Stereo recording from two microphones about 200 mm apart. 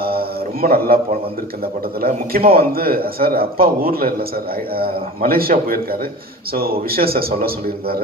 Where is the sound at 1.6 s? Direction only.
50° right (ahead or behind).